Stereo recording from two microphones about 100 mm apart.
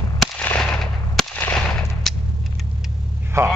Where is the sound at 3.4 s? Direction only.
30° right (ahead or behind).